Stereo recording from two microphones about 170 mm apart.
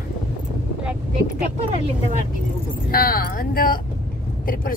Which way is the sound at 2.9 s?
60° left (ahead or behind).